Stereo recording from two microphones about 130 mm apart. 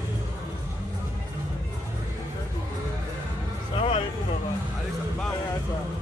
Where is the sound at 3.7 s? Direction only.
45° left (ahead or behind).